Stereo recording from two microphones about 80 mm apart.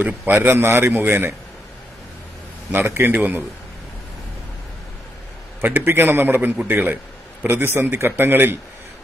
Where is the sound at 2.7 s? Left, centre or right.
Right.